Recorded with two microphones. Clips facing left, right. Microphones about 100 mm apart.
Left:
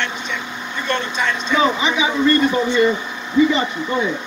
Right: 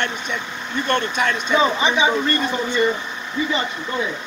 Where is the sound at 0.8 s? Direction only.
50° right (ahead or behind).